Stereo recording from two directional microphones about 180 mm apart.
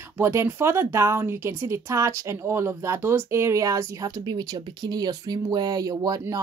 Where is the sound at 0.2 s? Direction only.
15° right (ahead or behind).